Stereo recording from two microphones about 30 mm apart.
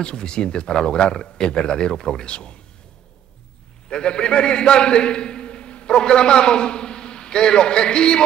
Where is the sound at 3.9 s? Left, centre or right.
Left.